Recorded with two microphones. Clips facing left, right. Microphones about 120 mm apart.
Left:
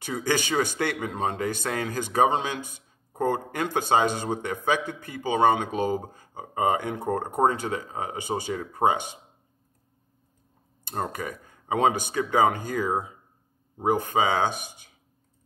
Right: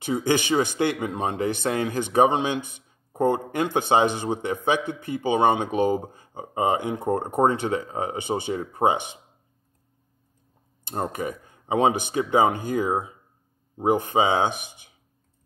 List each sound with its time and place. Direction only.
0.3 s speech: 20° right (ahead or behind)
10.8 s speech: 20° right (ahead or behind)
13.7 s speech: 20° right (ahead or behind)